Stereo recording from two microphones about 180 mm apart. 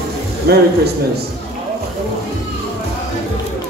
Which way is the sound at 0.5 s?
60° right (ahead or behind).